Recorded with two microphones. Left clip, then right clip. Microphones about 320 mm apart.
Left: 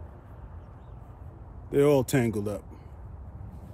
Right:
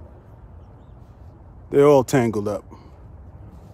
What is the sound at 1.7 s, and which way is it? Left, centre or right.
Speech, right.